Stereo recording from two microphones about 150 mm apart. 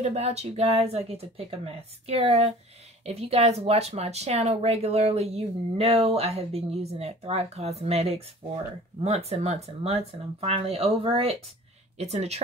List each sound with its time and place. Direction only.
0.0 s speech: 45° right (ahead or behind)